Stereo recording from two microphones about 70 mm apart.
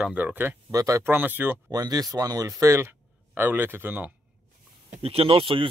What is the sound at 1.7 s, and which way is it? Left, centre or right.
Speech, right.